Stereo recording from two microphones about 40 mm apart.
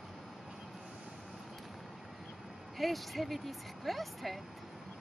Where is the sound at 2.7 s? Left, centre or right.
Centre.